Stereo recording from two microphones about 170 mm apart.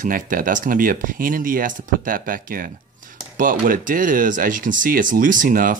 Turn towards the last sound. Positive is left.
turn(degrees=-55)  # may be behind; listen again after turning